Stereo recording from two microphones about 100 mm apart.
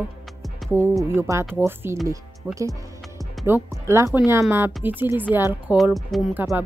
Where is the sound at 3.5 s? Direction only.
25° right (ahead or behind).